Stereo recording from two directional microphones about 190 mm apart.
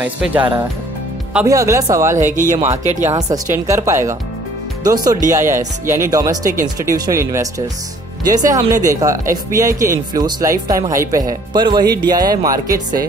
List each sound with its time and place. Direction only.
0.0 s speech: 5° right (ahead or behind)
2.6 s speech: 40° right (ahead or behind)
3.1 s speech: 15° right (ahead or behind)